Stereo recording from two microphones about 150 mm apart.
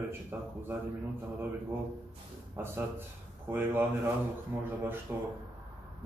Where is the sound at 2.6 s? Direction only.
15° right (ahead or behind).